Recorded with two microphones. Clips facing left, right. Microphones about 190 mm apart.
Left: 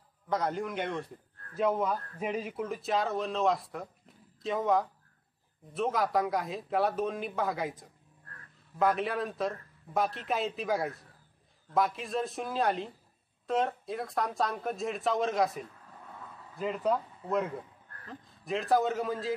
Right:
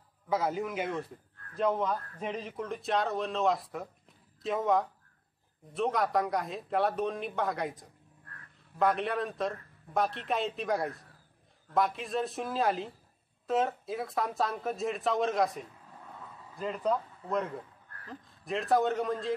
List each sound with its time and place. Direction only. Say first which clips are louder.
0.3 s a man's voice: right 1 dB; 5° right (ahead or behind)
16.2 s a sound: left 2 dB; centre (ahead or behind)
18.0 s a man's voice: even; centre (ahead or behind)